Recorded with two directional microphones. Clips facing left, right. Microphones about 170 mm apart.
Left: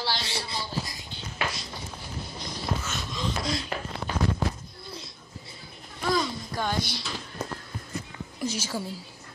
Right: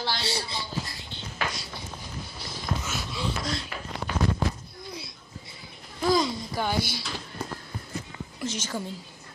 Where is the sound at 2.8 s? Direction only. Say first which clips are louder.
Right 1 dB; 10° right (ahead or behind).